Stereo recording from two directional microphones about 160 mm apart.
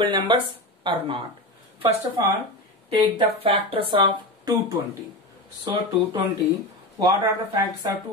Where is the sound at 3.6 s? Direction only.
35° right (ahead or behind).